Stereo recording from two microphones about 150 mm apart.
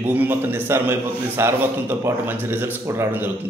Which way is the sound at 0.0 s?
15° right (ahead or behind).